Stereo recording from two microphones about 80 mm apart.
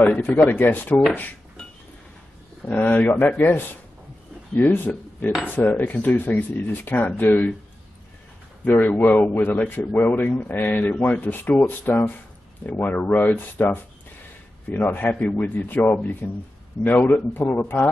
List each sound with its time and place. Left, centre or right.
0.0 s speech: left
2.6 s speech: left
8.6 s speech: left